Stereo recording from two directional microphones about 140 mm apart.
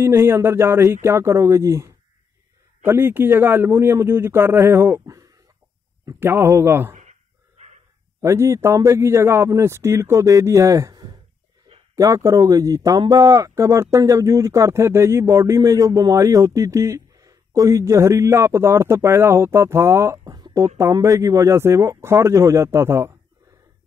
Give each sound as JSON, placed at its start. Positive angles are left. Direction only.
{"t": 0.0, "sound": "a man's voice", "side_deg": -20}
{"t": 7.0, "sound": "dog", "side_deg": -55}
{"t": 8.2, "sound": "speech", "side_deg": -20}